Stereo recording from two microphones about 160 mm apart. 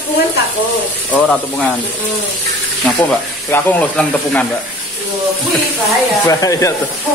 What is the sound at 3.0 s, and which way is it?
Speech, 10° left (ahead or behind).